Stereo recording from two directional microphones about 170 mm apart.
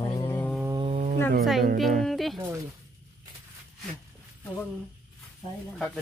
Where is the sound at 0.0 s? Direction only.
25° left (ahead or behind).